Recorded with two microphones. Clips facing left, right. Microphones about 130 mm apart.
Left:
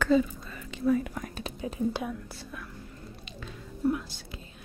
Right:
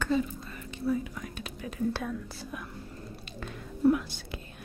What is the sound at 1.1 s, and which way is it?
Whispering, 45° left (ahead or behind).